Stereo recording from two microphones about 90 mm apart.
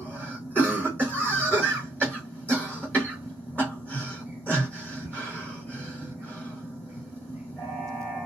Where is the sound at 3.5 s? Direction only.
15° left (ahead or behind).